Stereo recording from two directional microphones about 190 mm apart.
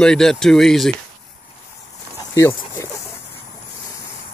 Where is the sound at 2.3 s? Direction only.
15° left (ahead or behind).